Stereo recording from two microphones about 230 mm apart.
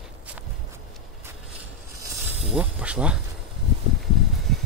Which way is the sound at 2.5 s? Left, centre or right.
Centre.